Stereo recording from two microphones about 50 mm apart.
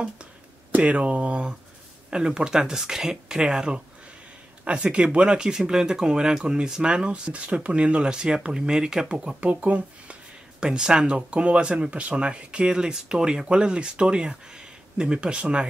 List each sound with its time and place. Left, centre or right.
0.7 s speech: right
9.4 s speech: right
10.6 s speech: centre